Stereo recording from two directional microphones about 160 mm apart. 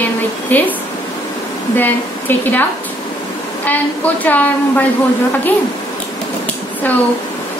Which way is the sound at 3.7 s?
10° left (ahead or behind).